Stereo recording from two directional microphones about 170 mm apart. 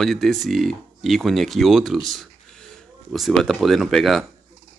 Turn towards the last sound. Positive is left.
turn(degrees=0)  # may be behind; listen again after turning